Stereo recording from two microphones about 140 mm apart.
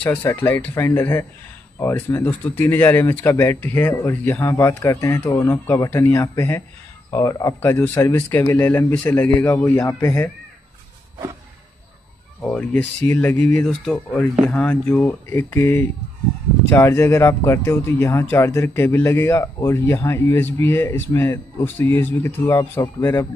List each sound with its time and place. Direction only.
0.0 s speech: 15° left (ahead or behind)
12.4 s speech: 10° left (ahead or behind)